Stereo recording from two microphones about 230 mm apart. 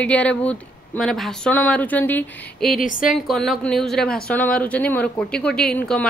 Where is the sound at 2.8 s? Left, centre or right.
Left.